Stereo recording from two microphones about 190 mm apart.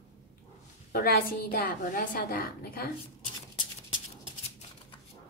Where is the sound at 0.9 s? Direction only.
50° left (ahead or behind).